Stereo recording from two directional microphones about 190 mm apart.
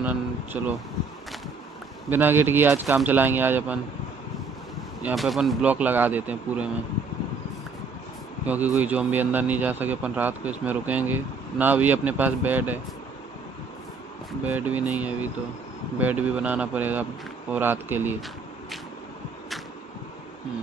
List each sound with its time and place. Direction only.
0.0 s speech: 10° right (ahead or behind)
2.0 s a man's voice: 10° right (ahead or behind)
5.0 s a man's voice: centre (ahead or behind)
8.5 s a man's voice: 10° right (ahead or behind)
14.4 s a man's voice: 10° right (ahead or behind)